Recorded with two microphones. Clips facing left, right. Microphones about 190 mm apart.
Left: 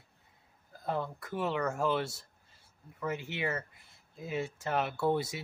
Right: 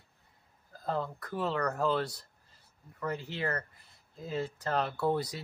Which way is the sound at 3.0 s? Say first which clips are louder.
Even; 10° left (ahead or behind).